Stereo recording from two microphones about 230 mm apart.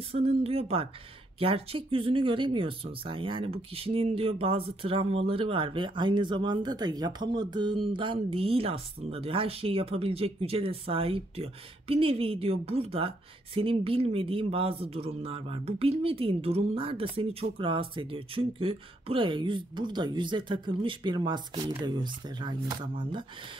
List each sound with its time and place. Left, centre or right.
0.1 s speech: right